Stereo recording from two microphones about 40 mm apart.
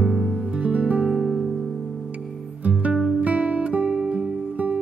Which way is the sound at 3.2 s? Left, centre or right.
Right.